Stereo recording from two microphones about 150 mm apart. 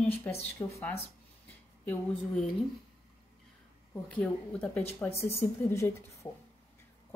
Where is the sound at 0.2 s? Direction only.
15° left (ahead or behind).